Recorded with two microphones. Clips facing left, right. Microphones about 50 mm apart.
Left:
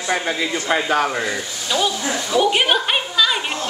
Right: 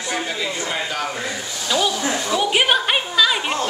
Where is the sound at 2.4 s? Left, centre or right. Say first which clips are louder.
Left 3 dB; centre.